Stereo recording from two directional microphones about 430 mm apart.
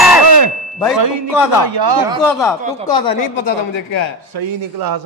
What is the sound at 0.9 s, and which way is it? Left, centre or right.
Speech, right.